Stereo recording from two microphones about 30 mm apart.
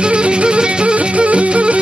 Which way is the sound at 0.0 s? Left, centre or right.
Right.